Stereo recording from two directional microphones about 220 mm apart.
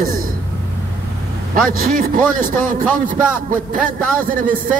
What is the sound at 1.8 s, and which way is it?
Speech, 40° right (ahead or behind).